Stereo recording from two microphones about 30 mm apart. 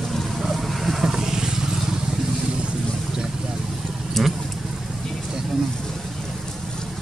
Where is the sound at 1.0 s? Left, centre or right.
Centre.